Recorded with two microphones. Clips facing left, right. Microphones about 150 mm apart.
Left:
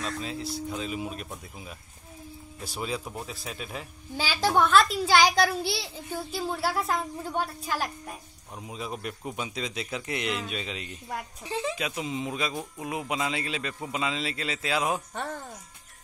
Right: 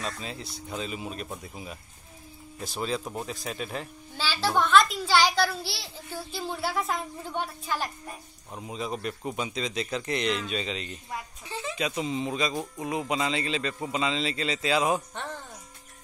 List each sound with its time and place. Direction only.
0.0 s a man's voice: centre (ahead or behind)
2.6 s a child's voice: 10° left (ahead or behind)
3.0 s a man's voice: 5° right (ahead or behind); by 6.4 s 15° left (ahead or behind)
6.7 s a child's voice: 5° left (ahead or behind)
8.5 s a man's voice: centre (ahead or behind)